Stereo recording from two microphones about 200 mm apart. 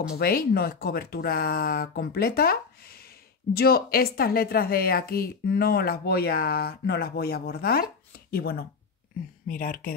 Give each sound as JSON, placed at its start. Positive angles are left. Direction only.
{"t": 0.1, "sound": "a woman's voice", "side_deg": 50}